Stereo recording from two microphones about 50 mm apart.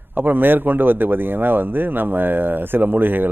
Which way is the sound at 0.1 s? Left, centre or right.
Right.